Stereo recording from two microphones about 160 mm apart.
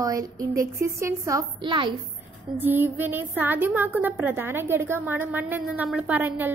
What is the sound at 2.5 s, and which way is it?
A woman's voice, 15° right (ahead or behind).